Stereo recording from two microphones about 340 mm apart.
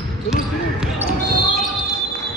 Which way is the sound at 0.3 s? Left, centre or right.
Centre.